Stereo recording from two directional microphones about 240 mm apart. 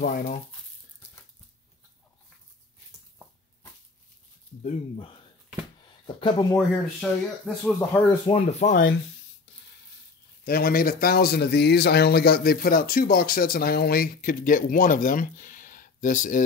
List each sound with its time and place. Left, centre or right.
0.0 s speech: left
4.6 s speech: left
5.8 s a sound: left
6.5 s speech: centre
8.3 s speech: left
10.4 s speech: left